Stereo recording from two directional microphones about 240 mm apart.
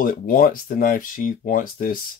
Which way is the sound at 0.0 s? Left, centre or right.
Left.